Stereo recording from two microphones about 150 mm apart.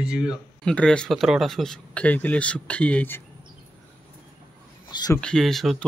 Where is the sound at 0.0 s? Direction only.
5° right (ahead or behind).